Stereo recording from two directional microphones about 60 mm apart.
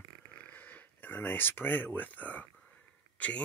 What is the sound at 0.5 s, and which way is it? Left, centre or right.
Speech, left.